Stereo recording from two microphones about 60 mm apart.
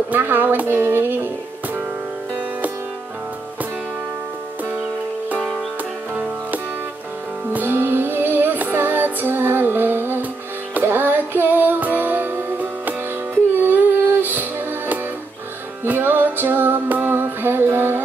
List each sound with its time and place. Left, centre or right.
0.1 s speech: right
6.1 s music: right
15.8 s music: right